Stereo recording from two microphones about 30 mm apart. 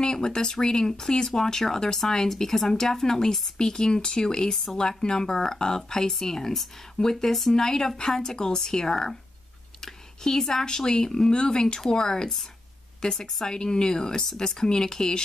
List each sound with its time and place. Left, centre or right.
0.0 s speech: left